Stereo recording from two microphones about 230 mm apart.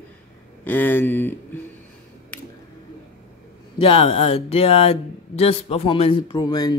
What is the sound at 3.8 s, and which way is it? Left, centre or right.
Speech, left.